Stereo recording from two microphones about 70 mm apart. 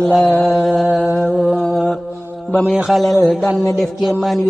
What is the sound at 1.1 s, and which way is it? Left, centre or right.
Music, centre.